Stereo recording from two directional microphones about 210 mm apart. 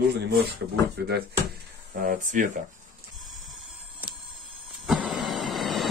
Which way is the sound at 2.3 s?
35° right (ahead or behind).